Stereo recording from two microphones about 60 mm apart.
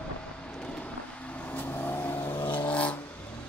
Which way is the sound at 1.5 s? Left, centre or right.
Left.